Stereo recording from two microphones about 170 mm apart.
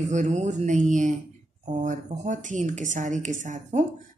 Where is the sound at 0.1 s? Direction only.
45° right (ahead or behind).